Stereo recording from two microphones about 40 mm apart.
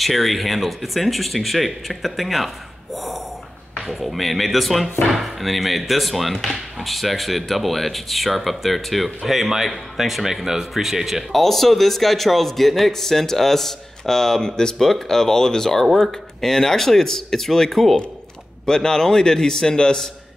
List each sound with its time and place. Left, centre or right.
0.0 s speech: centre
11.3 s speech: centre